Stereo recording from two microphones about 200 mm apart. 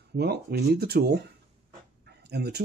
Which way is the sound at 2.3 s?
55° right (ahead or behind).